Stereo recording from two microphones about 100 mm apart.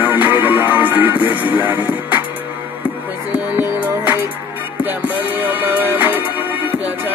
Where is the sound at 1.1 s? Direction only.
60° left (ahead or behind).